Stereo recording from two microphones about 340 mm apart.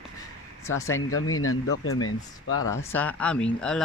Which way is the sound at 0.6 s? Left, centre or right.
Centre.